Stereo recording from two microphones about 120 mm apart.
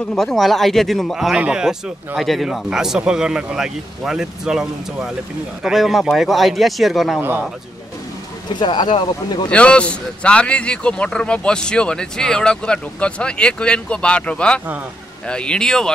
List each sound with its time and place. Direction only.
0.1 s speech: 5° left (ahead or behind)
7.2 s speech: 15° right (ahead or behind)
8.5 s speech: 40° left (ahead or behind)
9.5 s speech: 10° left (ahead or behind)